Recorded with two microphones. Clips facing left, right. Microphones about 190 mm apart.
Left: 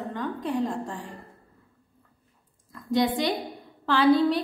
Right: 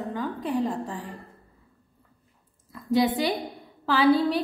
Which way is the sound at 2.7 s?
5° right (ahead or behind).